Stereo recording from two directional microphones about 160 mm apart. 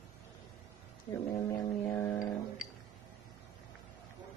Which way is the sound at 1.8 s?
10° left (ahead or behind).